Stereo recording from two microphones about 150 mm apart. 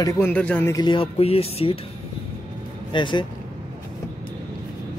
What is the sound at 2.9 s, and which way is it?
Speech, 30° left (ahead or behind).